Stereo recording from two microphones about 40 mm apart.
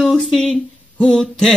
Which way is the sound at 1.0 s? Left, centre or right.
Centre.